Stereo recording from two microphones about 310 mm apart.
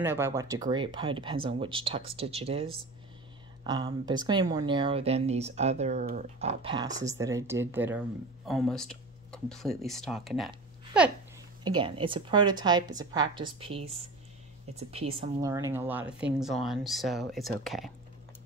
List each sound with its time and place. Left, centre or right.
0.0 s speech: centre
11.6 s speech: centre